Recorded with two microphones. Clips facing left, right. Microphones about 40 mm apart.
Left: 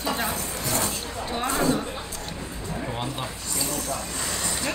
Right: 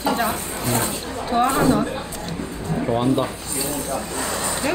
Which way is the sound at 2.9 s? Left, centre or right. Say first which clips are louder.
Right 14 dB; centre.